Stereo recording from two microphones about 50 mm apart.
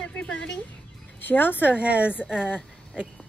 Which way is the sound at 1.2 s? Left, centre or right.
Left.